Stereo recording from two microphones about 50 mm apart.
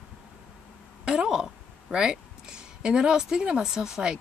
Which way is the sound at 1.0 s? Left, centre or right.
Centre.